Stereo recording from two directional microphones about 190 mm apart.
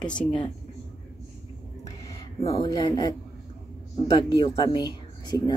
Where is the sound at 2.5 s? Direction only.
20° left (ahead or behind).